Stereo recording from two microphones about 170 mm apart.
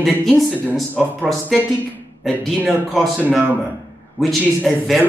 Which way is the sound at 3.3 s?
10° right (ahead or behind).